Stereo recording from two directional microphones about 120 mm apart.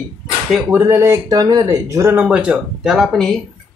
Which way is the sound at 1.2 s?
35° right (ahead or behind).